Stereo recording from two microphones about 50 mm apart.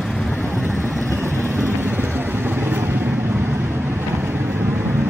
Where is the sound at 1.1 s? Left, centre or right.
Right.